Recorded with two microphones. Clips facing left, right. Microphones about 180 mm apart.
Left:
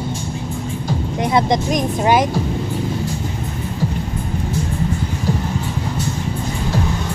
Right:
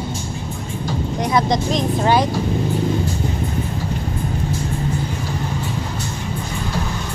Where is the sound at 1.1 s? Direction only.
25° left (ahead or behind).